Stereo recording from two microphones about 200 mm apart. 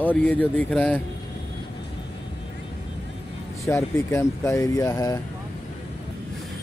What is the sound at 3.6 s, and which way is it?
Speech, 15° left (ahead or behind).